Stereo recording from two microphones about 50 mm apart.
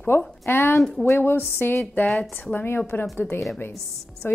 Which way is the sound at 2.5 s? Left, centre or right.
Left.